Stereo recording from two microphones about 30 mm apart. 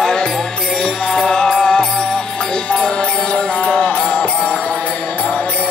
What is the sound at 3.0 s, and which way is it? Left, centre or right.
Music, left.